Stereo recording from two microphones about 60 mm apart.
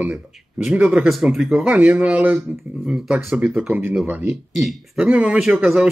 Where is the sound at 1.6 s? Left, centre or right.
Right.